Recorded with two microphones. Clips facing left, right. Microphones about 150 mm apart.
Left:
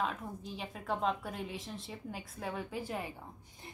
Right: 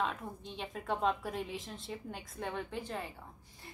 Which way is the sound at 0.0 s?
Centre (ahead or behind).